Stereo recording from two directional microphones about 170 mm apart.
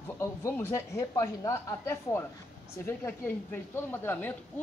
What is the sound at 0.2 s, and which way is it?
A woman's voice, 15° left (ahead or behind).